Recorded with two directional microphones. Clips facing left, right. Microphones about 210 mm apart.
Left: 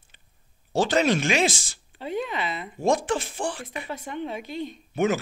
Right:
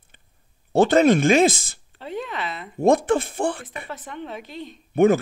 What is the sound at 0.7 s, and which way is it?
Speech, 55° right (ahead or behind).